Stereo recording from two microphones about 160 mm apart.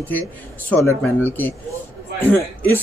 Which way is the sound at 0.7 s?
10° left (ahead or behind).